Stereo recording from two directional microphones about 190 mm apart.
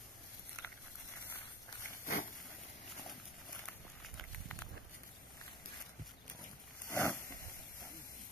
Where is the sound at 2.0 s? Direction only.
45° left (ahead or behind).